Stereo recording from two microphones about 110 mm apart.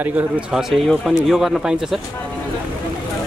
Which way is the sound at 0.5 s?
Centre (ahead or behind).